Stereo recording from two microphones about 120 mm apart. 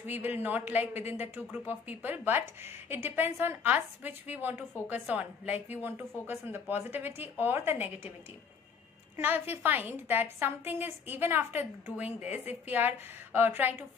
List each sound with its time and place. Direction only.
0.0 s speech: 15° right (ahead or behind)
9.1 s speech: 15° right (ahead or behind)